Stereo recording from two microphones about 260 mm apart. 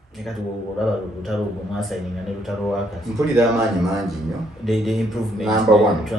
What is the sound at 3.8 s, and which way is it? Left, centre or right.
Speech, centre.